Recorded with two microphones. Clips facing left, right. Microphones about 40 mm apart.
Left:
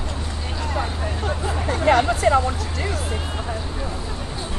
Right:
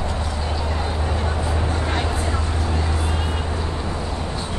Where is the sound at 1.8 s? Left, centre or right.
Left.